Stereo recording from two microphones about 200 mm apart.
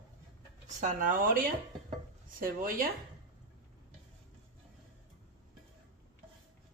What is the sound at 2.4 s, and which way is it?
Speech, 45° right (ahead or behind).